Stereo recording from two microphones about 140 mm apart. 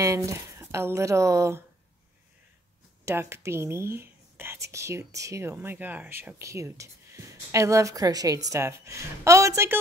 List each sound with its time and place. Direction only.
0.0 s speech: 20° right (ahead or behind)
3.1 s speech: 20° right (ahead or behind)